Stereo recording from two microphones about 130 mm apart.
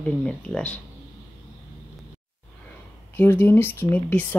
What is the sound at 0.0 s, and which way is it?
Speech, 10° left (ahead or behind).